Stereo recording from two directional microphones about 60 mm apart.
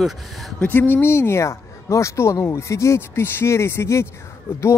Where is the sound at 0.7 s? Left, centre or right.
Left.